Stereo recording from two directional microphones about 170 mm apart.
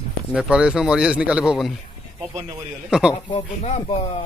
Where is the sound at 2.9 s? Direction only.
5° right (ahead or behind).